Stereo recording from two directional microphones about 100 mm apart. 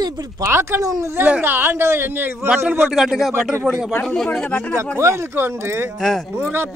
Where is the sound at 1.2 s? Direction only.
15° right (ahead or behind).